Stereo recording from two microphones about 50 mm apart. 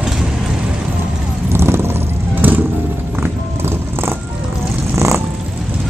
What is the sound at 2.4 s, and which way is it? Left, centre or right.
Vehicle, right.